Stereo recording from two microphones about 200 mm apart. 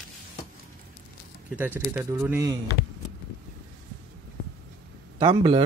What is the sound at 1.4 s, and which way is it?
Speech, 10° right (ahead or behind).